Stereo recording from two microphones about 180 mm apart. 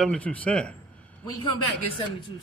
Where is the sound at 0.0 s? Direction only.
5° left (ahead or behind).